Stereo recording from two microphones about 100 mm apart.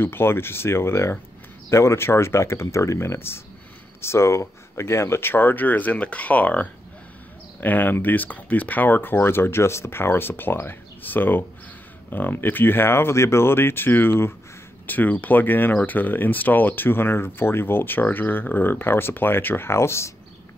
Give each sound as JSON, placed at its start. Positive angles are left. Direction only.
{"t": 0.0, "sound": "speech", "side_deg": 25}